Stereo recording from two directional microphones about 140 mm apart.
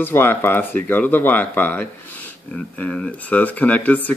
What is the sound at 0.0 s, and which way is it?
Speech, 15° left (ahead or behind).